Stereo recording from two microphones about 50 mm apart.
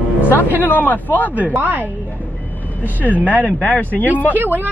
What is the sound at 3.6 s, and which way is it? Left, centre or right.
Speech, left.